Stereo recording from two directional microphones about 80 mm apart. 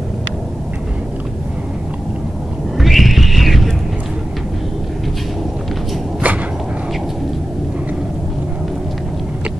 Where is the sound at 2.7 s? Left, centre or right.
Centre.